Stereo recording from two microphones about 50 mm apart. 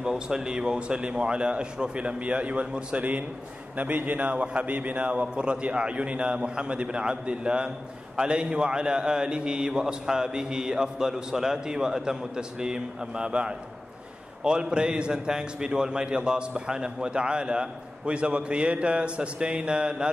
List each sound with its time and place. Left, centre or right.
0.0 s a man's voice: centre